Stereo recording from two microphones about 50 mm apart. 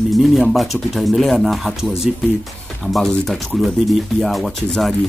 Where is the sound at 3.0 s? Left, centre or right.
Centre.